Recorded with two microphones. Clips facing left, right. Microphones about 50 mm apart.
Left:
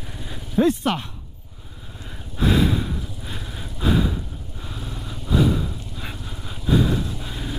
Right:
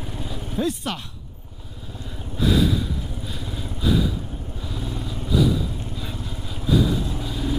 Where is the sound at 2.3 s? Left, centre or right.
Left.